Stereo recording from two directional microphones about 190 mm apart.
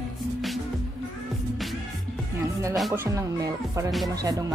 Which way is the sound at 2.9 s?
15° right (ahead or behind).